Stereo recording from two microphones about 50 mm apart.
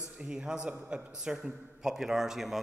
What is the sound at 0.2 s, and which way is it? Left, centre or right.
A man's voice, centre.